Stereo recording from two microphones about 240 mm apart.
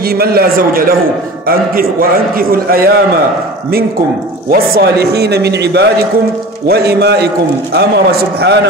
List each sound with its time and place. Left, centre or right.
0.1 s a man's voice: right
4.5 s a man's voice: right